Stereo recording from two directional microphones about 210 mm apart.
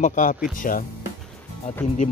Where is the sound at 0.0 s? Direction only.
35° left (ahead or behind).